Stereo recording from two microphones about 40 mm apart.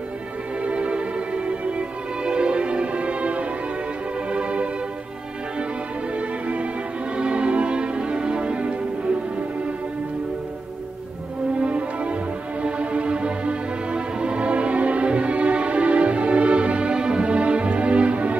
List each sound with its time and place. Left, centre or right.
0.6 s music: right
6.1 s music: right
11.5 s music: right